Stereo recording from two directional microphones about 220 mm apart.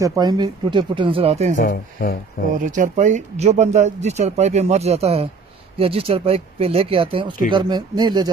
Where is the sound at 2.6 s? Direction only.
35° right (ahead or behind).